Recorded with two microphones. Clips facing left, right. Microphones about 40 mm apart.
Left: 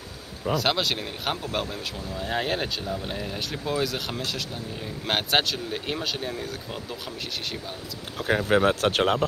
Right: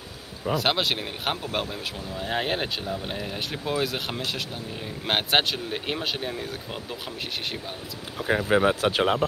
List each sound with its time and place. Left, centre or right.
0.5 s speech: centre
8.3 s speech: centre